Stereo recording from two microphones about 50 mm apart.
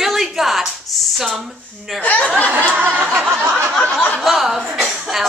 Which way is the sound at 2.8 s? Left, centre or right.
Right.